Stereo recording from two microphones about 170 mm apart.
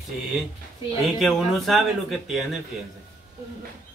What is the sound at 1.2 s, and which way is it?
Speech, centre (ahead or behind).